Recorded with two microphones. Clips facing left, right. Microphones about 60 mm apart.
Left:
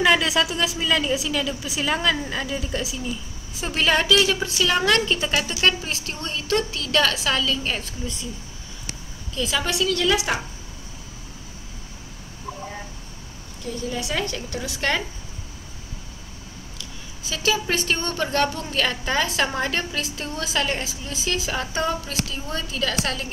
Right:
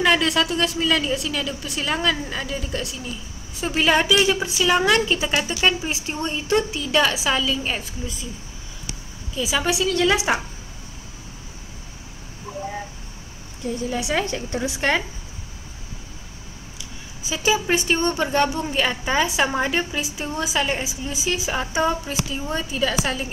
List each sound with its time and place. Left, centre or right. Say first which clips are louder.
0.0 s a woman's voice: even; centre
9.3 s a woman's voice: right 2 dB; centre
13.8 s a woman's voice: right 3 dB; centre
17.2 s a woman's voice: right 2 dB; centre